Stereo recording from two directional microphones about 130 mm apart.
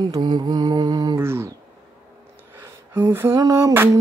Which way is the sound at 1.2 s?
20° right (ahead or behind).